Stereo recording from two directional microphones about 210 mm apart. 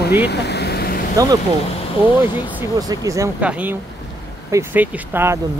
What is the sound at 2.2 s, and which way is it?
Speech, 15° right (ahead or behind).